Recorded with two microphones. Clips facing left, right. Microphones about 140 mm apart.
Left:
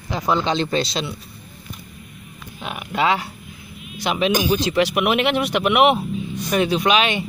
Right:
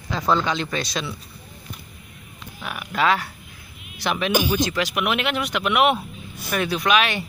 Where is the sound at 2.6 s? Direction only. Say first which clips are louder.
Left 1 dB; 25° left (ahead or behind).